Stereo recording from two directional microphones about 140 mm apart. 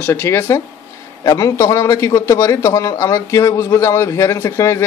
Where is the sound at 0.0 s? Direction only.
15° left (ahead or behind).